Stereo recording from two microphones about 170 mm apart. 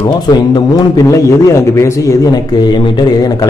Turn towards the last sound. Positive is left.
turn(degrees=25)  # may be behind; listen again after turning